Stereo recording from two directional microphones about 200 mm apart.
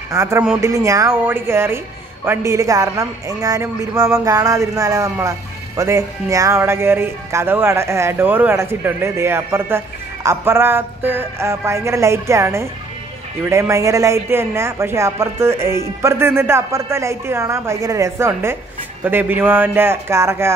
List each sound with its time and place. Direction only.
0.1 s speech: 15° right (ahead or behind)